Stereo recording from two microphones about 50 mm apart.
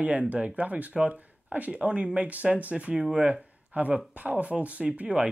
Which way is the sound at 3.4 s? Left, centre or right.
Right.